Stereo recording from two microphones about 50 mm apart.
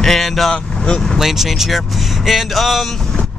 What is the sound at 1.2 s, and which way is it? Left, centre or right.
A man's voice, centre.